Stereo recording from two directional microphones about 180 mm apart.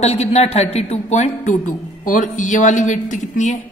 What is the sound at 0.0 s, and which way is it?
A woman's voice, 35° left (ahead or behind).